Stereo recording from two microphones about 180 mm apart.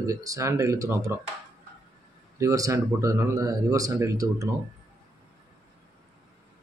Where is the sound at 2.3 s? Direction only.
20° right (ahead or behind).